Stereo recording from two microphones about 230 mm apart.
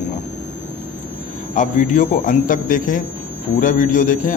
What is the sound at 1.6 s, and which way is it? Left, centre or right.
A man's voice, left.